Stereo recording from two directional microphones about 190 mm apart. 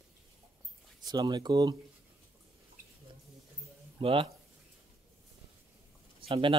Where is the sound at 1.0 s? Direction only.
20° right (ahead or behind).